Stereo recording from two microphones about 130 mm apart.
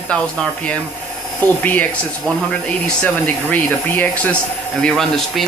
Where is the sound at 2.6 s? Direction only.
10° left (ahead or behind).